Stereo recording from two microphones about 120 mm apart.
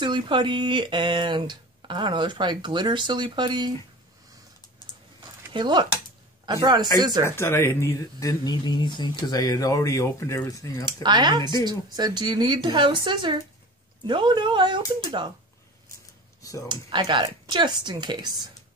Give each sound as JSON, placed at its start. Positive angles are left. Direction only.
{"t": 0.0, "sound": "speech", "side_deg": -40}
{"t": 5.5, "sound": "a man's voice", "side_deg": -40}
{"t": 7.2, "sound": "speech", "side_deg": 20}
{"t": 10.9, "sound": "speech", "side_deg": -40}
{"t": 16.6, "sound": "speech", "side_deg": -40}